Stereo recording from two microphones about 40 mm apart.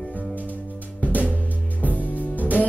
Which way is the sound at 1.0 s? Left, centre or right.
Left.